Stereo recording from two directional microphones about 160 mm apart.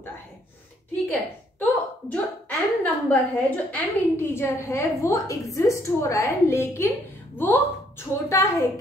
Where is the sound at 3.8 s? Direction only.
15° left (ahead or behind).